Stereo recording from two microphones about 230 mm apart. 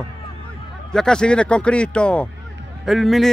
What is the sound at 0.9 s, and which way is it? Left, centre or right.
Speech, centre.